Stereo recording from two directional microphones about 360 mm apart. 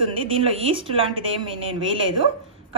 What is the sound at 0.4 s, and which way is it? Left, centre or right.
A woman's voice, centre.